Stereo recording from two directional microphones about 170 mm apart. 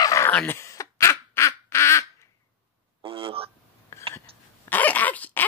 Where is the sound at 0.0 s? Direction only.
20° left (ahead or behind).